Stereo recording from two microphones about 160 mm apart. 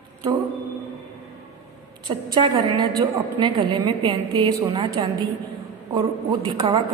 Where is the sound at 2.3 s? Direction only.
30° right (ahead or behind).